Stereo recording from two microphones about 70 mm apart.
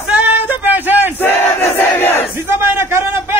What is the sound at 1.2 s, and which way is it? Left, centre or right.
Crowd, left.